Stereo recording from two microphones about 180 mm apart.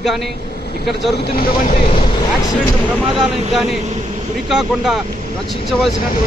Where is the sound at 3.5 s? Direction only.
Centre (ahead or behind).